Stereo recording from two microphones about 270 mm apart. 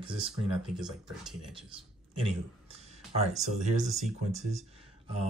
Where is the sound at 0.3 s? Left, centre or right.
Centre.